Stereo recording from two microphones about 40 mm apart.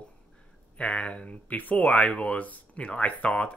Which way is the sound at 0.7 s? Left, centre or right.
Left.